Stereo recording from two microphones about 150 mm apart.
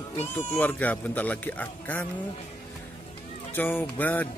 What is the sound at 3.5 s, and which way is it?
Speech, 10° left (ahead or behind).